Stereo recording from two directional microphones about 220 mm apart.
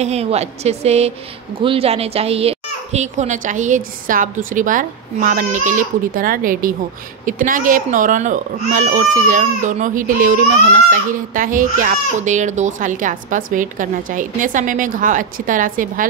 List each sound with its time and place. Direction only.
0.0 s a woman's voice: 30° right (ahead or behind)